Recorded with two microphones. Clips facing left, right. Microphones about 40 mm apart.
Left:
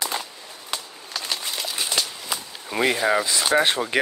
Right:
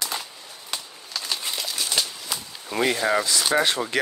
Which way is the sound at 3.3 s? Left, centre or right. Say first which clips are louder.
Left 2 dB; left.